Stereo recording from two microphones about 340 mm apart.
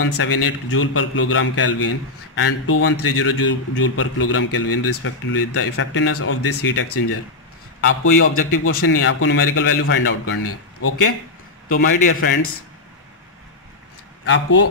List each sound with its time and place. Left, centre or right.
0.0 s a man's voice: left
12.1 s a man's voice: left
14.2 s a man's voice: left